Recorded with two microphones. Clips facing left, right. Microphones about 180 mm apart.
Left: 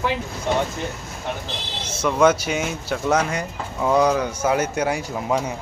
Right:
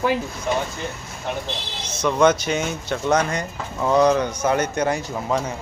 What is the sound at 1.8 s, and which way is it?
Speech, 10° left (ahead or behind).